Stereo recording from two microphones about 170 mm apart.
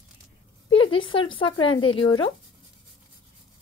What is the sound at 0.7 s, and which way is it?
Speech, 30° left (ahead or behind).